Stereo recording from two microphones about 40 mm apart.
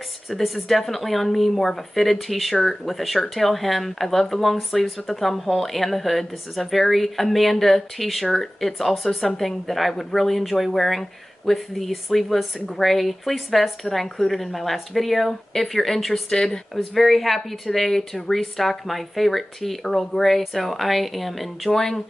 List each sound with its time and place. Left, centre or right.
0.3 s speech: centre
2.5 s speech: centre
2.8 s speech: centre
16.7 s speech: centre
21.7 s speech: centre